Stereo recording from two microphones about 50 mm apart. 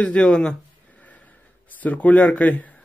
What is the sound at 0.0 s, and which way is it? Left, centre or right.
Speech, centre.